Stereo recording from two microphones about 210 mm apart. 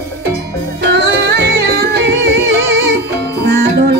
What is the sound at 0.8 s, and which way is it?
Music, 55° right (ahead or behind).